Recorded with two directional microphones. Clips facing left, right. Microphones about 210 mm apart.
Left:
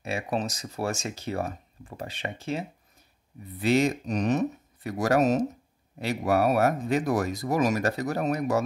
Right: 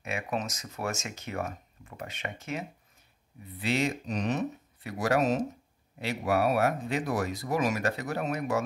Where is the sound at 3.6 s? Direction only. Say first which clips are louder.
Left 6 dB; 45° left (ahead or behind).